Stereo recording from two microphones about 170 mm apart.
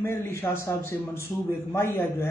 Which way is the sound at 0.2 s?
15° left (ahead or behind).